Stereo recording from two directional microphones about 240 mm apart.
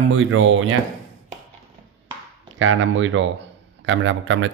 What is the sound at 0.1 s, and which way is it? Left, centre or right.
Speech, right.